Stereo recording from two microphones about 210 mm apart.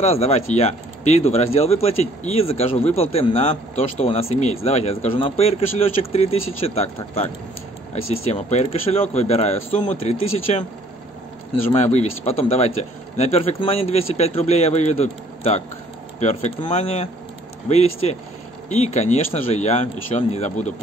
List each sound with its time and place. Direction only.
0.0 s speech: 30° left (ahead or behind)
8.3 s speech: 30° left (ahead or behind)